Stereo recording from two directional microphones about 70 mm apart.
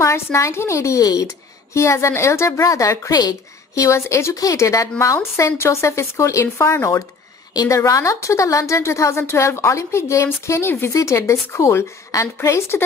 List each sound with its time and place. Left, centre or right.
0.0 s a woman's voice: left
1.7 s a woman's voice: left
3.1 s a woman's voice: left